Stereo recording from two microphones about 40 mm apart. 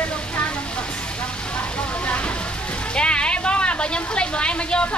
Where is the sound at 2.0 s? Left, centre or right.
Left.